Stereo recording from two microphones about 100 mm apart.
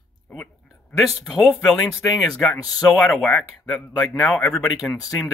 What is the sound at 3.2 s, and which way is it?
Speech, 10° left (ahead or behind).